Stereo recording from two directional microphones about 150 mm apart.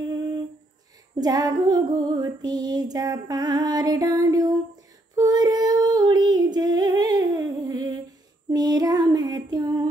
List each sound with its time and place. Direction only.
1.2 s female singing: 25° right (ahead or behind)